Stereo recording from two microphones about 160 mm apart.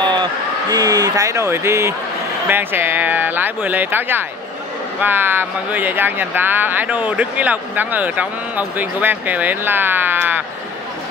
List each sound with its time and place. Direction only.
0.0 s a man's voice: 30° right (ahead or behind); by 10.4 s 10° right (ahead or behind)